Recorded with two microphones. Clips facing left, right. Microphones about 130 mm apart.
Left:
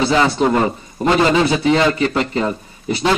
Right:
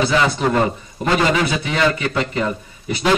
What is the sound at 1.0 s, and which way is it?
A man's voice, 30° left (ahead or behind).